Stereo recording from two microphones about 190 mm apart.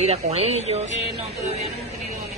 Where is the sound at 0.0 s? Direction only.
35° right (ahead or behind).